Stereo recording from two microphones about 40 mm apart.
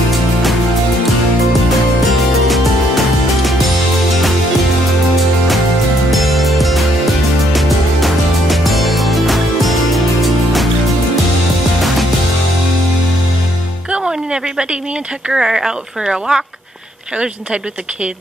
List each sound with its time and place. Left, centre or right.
2.4 s music: centre
6.0 s music: centre
14.0 s music: right
15.3 s speech: centre